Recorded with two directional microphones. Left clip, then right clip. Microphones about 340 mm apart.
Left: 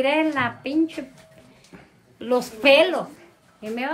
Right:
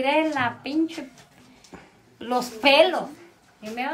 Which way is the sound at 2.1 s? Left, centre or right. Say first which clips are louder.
Left 3 dB; centre.